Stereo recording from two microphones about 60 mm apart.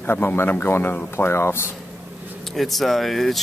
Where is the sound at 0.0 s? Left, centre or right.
Left.